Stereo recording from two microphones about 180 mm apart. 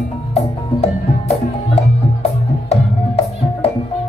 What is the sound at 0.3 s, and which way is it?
Music, 35° left (ahead or behind).